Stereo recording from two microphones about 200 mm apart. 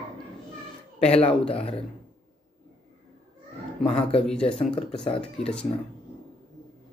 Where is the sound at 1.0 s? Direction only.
30° left (ahead or behind).